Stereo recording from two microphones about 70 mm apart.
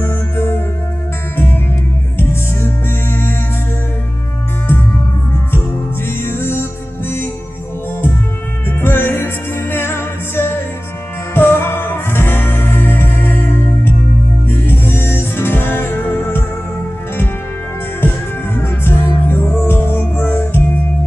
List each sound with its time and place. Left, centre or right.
0.0 s music: left
6.0 s music: left
8.8 s music: left
14.5 s music: left
18.0 s music: left